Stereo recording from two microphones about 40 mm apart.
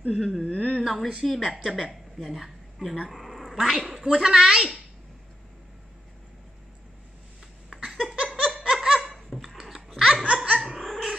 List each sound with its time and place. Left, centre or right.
0.1 s speech: centre
0.4 s a sound: left
0.8 s a woman's voice: centre
1.5 s a woman's voice: centre
2.1 s speech: centre
3.9 s a woman's voice: centre
7.7 s laughter: centre
9.4 s dog: centre
9.9 s laughter: centre
10.6 s cat: centre